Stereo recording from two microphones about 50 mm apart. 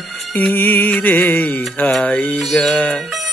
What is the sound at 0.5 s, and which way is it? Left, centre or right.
Music, left.